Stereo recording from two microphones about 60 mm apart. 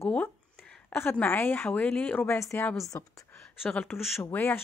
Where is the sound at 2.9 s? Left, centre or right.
Left.